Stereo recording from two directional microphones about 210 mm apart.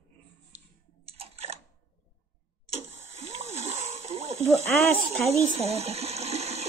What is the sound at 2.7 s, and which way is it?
Splash, 30° right (ahead or behind).